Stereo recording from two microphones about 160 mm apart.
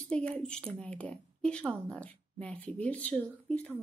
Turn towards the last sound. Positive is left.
turn(degrees=10)  # may be behind; listen again after turning